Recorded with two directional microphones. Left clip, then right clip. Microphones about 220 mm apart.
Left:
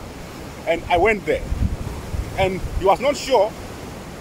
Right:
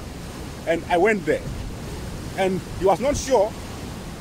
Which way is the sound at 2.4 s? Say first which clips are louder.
Left 1 dB; 20° right (ahead or behind).